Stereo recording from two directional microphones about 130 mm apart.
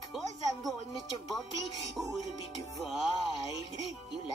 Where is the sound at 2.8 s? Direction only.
Centre (ahead or behind).